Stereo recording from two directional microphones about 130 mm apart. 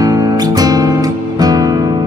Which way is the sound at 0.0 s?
30° right (ahead or behind).